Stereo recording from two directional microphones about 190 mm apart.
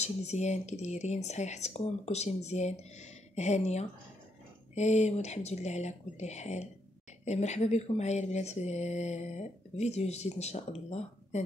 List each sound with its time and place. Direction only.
0.0 s speech: 35° left (ahead or behind)